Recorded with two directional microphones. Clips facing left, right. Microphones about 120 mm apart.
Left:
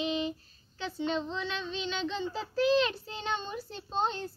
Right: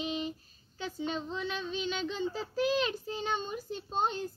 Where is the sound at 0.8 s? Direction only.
10° right (ahead or behind).